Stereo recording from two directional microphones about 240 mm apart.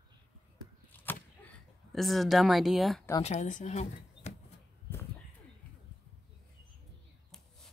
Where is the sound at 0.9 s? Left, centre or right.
Centre.